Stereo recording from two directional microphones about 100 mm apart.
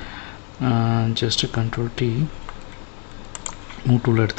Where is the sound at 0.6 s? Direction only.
10° right (ahead or behind).